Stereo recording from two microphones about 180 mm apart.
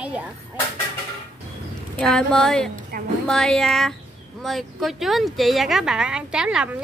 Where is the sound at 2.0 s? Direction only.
5° left (ahead or behind).